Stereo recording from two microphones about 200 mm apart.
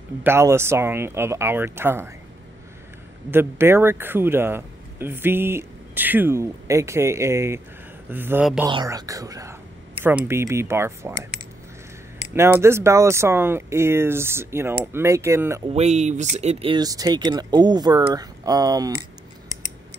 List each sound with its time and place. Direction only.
0.2 s speech: 10° right (ahead or behind)
3.3 s speech: 10° right (ahead or behind)
8.6 s speech: 20° right (ahead or behind)
12.4 s speech: 10° right (ahead or behind)
15.7 s speech: 35° right (ahead or behind)